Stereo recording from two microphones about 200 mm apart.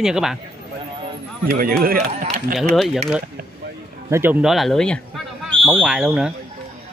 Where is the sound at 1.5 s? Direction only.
45° right (ahead or behind).